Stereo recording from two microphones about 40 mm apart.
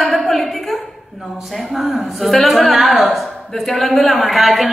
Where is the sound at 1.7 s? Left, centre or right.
Centre.